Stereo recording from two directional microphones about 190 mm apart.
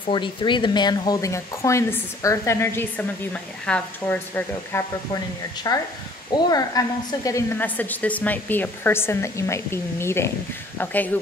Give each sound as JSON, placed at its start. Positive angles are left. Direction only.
{"t": 0.1, "sound": "speech", "side_deg": 25}